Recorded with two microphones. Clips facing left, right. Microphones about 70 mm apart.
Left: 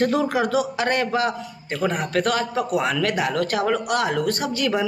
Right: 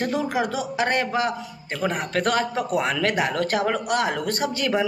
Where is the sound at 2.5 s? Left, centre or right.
Centre.